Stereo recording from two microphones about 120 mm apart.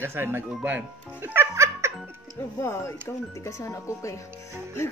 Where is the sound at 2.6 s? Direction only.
20° left (ahead or behind).